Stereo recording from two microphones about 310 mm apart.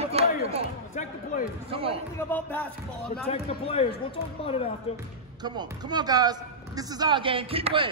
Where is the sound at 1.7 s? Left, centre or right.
Centre.